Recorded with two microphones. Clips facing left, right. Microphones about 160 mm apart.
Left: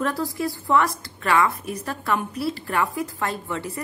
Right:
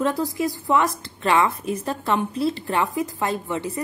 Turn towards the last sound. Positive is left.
turn(degrees=-20)  # may be behind; listen again after turning